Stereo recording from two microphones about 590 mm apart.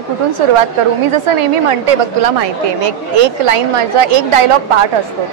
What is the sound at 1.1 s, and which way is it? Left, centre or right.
A woman's voice, right.